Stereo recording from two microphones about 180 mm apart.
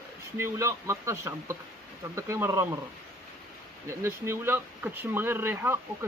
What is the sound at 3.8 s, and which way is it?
Speech, 15° right (ahead or behind).